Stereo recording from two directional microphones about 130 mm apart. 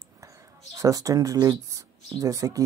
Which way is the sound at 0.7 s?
25° right (ahead or behind).